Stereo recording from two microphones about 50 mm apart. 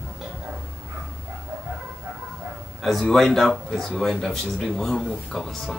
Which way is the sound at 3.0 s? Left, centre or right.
Centre.